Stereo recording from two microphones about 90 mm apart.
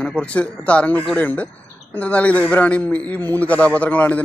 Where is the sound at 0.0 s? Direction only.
15° left (ahead or behind).